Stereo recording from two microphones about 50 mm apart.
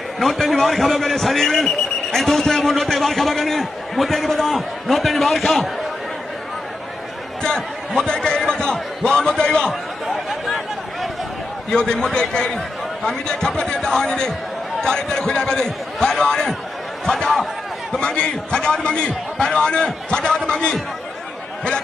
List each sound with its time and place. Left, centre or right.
0.2 s a man's voice: centre
7.4 s a sound: centre
9.0 s a man's voice: centre
10.0 s a sound: centre
11.7 s a man's voice: centre
17.9 s a man's voice: centre